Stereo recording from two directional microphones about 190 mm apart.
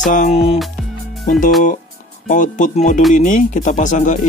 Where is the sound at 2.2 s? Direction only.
40° left (ahead or behind).